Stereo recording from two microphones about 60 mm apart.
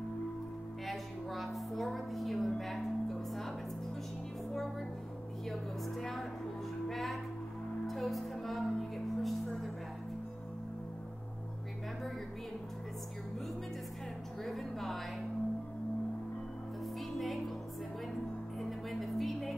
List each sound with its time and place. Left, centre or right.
0.8 s music: centre
5.5 s music: centre
14.4 s music: centre
18.6 s music: centre